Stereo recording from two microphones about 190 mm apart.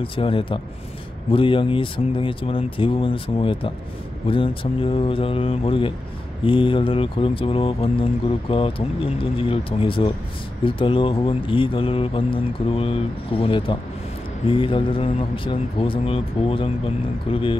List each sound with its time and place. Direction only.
0.0 s speech: 30° left (ahead or behind)